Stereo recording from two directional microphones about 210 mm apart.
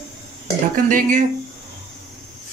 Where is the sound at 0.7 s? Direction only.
40° right (ahead or behind).